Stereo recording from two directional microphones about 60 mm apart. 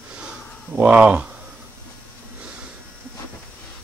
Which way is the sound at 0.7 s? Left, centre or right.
Right.